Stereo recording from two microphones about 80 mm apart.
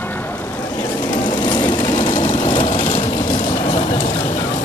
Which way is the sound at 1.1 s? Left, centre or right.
Left.